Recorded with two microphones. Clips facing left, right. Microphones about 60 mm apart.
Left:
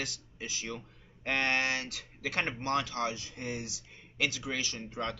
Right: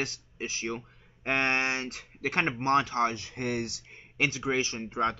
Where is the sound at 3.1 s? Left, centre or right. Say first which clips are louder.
Right 7 dB; right.